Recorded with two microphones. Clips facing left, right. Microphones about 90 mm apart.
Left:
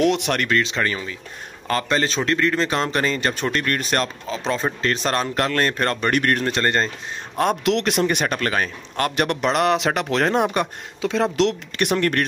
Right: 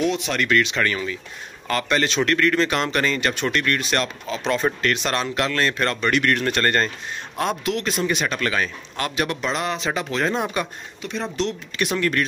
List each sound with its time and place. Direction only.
0.0 s speech: 70° left (ahead or behind)
0.4 s speech: 30° left (ahead or behind)
6.4 s speech: 25° left (ahead or behind)
7.6 s speech: 70° left (ahead or behind)
11.7 s speech: 55° left (ahead or behind)